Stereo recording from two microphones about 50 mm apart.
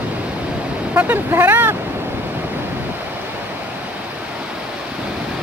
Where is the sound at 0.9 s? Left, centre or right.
Right.